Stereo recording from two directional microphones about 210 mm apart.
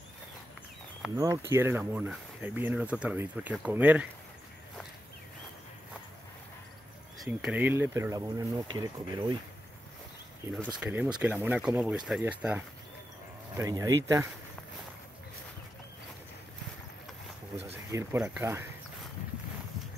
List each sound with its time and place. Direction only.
1.1 s speech: 15° right (ahead or behind)
7.2 s speech: 10° right (ahead or behind)
10.5 s speech: centre (ahead or behind)
17.9 s speech: 10° right (ahead or behind)